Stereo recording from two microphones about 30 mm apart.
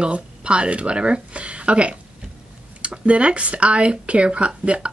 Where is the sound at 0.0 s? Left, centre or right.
Right.